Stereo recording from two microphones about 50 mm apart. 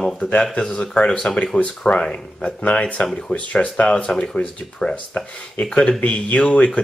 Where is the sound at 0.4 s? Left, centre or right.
Centre.